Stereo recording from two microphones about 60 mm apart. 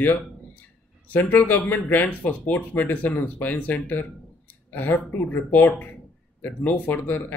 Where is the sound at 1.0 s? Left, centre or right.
Left.